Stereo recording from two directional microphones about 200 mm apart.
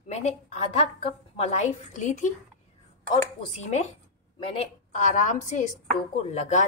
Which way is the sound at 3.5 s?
35° left (ahead or behind).